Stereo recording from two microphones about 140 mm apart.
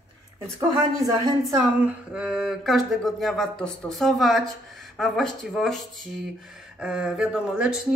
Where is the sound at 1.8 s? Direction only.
5° right (ahead or behind).